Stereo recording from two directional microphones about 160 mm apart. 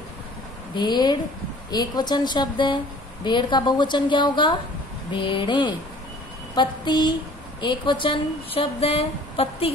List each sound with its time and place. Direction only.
0.7 s a woman's voice: 30° left (ahead or behind)